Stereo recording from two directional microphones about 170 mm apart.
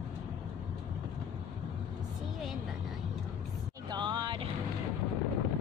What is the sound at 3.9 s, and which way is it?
Vehicle, 25° right (ahead or behind).